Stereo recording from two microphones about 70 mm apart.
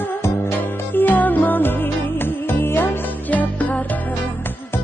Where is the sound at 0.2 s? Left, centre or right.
Left.